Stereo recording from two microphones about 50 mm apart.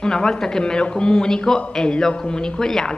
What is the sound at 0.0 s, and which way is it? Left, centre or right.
A woman's voice, centre.